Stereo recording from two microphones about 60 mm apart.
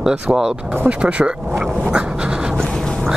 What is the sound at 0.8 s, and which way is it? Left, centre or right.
Speech, centre.